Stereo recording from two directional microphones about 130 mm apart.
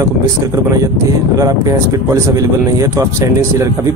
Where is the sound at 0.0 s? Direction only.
25° right (ahead or behind).